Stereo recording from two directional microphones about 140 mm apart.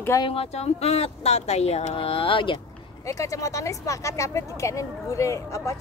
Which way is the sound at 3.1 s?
25° left (ahead or behind).